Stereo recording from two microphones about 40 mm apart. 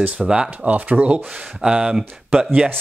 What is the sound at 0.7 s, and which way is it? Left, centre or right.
Speech, right.